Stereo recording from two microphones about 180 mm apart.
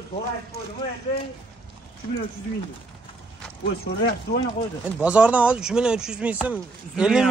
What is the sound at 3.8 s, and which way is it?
Speech, 60° left (ahead or behind).